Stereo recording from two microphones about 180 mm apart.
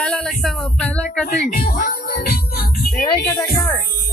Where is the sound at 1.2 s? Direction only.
50° left (ahead or behind).